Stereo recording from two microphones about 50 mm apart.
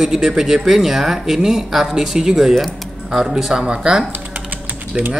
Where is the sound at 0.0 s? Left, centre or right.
Centre.